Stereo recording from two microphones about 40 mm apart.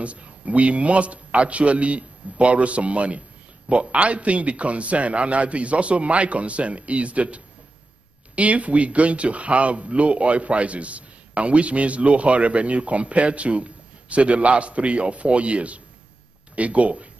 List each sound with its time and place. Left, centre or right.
0.0 s speech: right